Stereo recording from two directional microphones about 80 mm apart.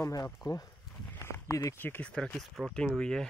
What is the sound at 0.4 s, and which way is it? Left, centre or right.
Speech, centre.